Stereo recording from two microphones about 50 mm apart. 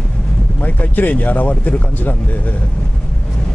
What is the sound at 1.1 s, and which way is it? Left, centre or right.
Speech, left.